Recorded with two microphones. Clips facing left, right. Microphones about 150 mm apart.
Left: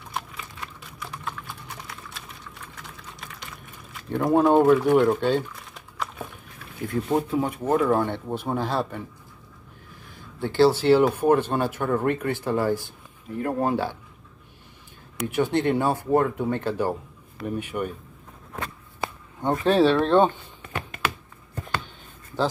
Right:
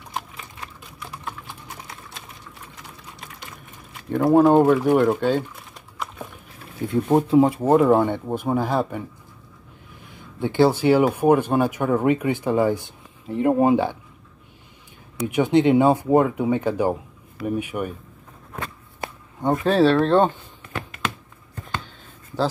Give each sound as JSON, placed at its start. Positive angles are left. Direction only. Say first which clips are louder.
{"t": 4.1, "sound": "speech", "louder": "right 4 dB", "side_deg": -5}
{"t": 6.9, "sound": "speech", "louder": "right 6 dB", "side_deg": -25}
{"t": 7.9, "sound": "speech", "louder": "right 5 dB", "side_deg": -20}
{"t": 10.0, "sound": "speech", "louder": "right 4 dB", "side_deg": -20}
{"t": 15.2, "sound": "speech", "louder": "right 5 dB", "side_deg": -15}
{"t": 19.4, "sound": "speech", "louder": "right 2 dB", "side_deg": 0}